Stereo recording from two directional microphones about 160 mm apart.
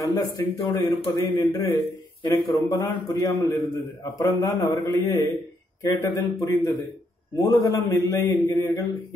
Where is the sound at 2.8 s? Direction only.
20° left (ahead or behind).